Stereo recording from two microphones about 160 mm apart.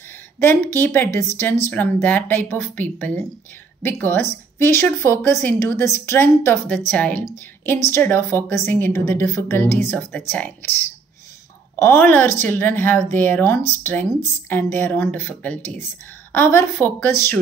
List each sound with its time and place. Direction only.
0.4 s speech: 15° left (ahead or behind)
11.7 s speech: 15° left (ahead or behind)